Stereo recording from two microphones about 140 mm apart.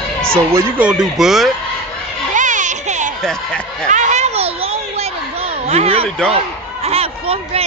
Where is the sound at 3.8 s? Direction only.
60° right (ahead or behind).